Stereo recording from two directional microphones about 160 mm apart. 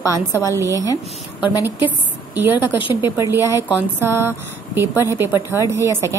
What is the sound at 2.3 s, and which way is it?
A woman's voice, 15° right (ahead or behind).